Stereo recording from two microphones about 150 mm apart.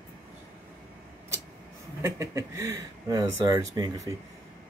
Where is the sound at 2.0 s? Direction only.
20° right (ahead or behind).